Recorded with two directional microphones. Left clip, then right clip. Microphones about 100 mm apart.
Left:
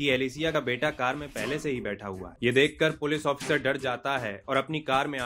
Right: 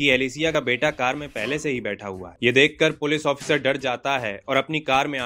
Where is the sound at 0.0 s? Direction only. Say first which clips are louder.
Right 6 dB; 30° right (ahead or behind).